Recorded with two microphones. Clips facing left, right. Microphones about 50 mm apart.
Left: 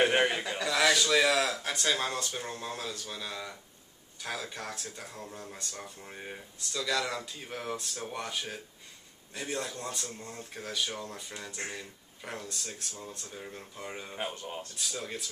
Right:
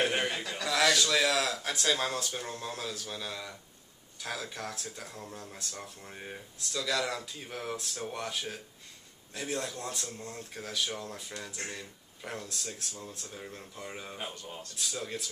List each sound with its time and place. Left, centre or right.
0.1 s a sound: centre
0.7 s speech: centre
14.3 s speech: left
14.8 s speech: centre